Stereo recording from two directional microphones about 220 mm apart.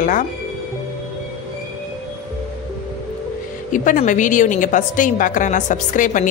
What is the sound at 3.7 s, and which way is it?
A woman's voice, 35° left (ahead or behind).